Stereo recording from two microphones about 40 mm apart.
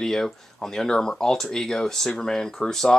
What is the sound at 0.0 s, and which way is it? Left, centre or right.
Speech, centre.